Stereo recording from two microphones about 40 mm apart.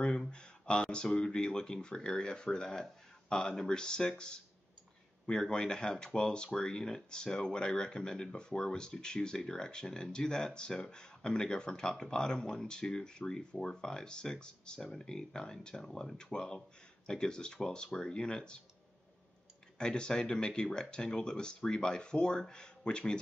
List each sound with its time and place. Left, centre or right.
0.0 s a sound: centre
1.0 s speech: centre
5.2 s speech: centre
19.8 s speech: centre